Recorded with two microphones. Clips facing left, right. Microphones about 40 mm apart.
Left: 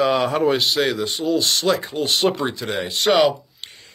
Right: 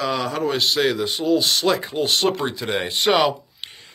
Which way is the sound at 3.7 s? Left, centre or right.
Centre.